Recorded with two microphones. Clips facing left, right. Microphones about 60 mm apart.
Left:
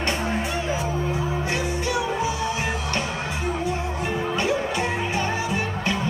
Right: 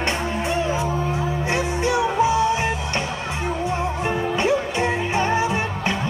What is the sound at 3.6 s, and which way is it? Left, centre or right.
Music, right.